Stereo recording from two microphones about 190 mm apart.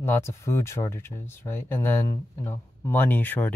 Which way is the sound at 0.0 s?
15° left (ahead or behind).